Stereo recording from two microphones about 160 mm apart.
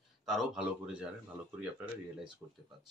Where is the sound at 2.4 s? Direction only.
20° right (ahead or behind).